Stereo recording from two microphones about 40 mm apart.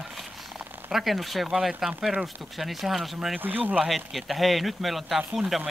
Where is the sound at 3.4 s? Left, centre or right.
Right.